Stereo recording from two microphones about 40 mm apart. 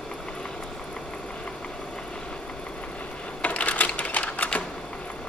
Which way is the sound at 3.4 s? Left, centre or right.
Left.